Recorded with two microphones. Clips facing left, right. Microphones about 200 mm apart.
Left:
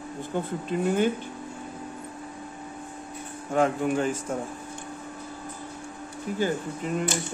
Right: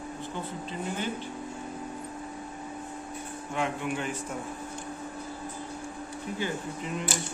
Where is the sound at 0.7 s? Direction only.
60° left (ahead or behind).